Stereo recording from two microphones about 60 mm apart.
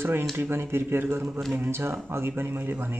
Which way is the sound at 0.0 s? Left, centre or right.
Right.